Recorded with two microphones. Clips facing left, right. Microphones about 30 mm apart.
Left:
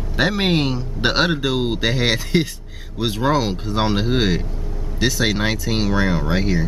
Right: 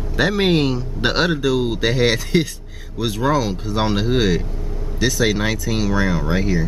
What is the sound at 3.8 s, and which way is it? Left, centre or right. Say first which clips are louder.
Speech: right 1 dB; centre.